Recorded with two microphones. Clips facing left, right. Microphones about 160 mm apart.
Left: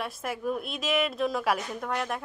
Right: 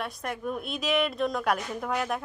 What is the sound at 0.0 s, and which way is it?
A woman's voice, centre (ahead or behind).